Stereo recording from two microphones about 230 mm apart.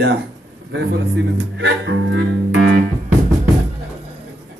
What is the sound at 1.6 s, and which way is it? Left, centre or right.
Music, right.